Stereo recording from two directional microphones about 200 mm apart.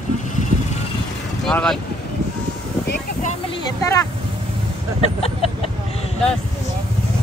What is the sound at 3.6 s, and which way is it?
Speech, 15° left (ahead or behind).